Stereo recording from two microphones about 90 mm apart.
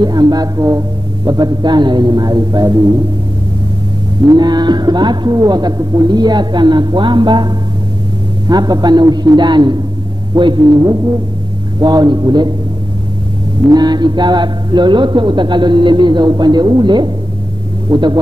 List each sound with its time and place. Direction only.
0.0 s speech: 50° right (ahead or behind)
4.3 s a man's voice: 50° right (ahead or behind)
11.8 s speech: 55° right (ahead or behind)
13.7 s a man's voice: 50° right (ahead or behind)